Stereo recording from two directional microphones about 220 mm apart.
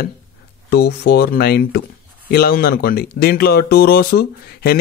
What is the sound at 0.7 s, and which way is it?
Speech, 45° left (ahead or behind).